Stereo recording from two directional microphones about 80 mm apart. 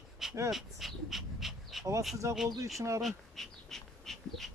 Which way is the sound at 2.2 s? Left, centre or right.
Right.